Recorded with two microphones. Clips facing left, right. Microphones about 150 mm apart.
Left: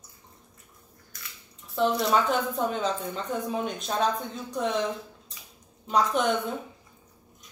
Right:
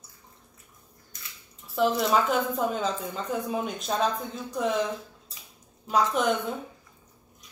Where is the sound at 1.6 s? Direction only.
Centre (ahead or behind).